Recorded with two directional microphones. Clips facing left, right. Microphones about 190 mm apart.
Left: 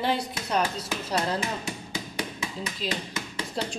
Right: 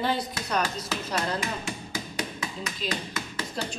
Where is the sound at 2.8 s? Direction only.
25° left (ahead or behind).